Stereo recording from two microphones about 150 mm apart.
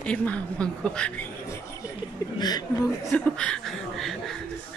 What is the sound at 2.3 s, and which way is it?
Speech, 25° left (ahead or behind).